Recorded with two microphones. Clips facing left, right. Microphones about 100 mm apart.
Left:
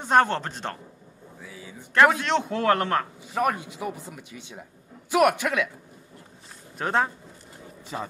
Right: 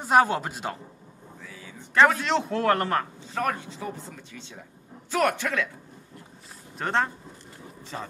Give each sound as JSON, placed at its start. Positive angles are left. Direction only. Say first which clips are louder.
{"t": 0.0, "sound": "speech", "louder": "even", "side_deg": -5}
{"t": 1.4, "sound": "a sound", "louder": "left 3 dB", "side_deg": 15}
{"t": 2.0, "sound": "a man's voice", "louder": "left 1 dB", "side_deg": 0}
{"t": 3.2, "sound": "speech", "louder": "left 3 dB", "side_deg": 15}
{"t": 6.8, "sound": "a man's voice", "louder": "left 1 dB", "side_deg": 5}